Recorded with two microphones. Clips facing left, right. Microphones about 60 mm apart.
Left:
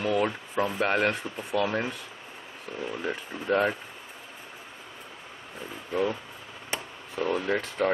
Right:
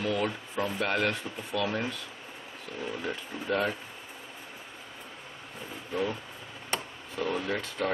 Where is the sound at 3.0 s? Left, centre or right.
Left.